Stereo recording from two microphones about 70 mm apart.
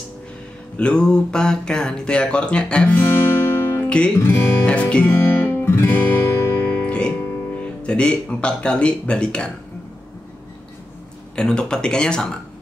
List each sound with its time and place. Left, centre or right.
0.7 s speech: centre; by 3.8 s left
3.8 s music: centre
4.2 s speech: left
4.6 s speech: centre
5.1 s music: left
6.7 s music: centre
7.8 s speech: centre
11.3 s speech: centre